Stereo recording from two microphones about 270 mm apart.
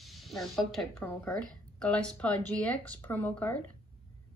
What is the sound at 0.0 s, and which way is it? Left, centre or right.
Speech, centre.